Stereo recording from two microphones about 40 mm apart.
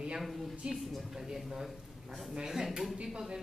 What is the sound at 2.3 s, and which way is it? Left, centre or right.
Speech, centre.